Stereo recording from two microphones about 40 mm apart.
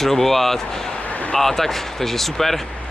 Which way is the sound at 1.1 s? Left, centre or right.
Left.